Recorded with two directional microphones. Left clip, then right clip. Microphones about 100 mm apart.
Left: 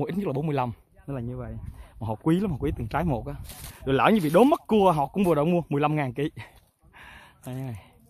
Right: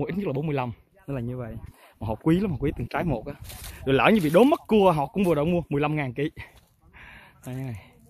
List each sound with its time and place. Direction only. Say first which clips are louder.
0.0 s speech: even; 45° left (ahead or behind)
1.0 s speech: right 2 dB; 15° left (ahead or behind)
2.2 s speech: right 1 dB; 30° left (ahead or behind)
3.7 s speech: right 1 dB; 25° left (ahead or behind)
4.3 s speech: right 1 dB; 40° left (ahead or behind)
5.1 s speech: left 1 dB; 50° left (ahead or behind)
5.8 s speech: left 1 dB; 50° left (ahead or behind)
7.0 s a sound: even; 40° left (ahead or behind)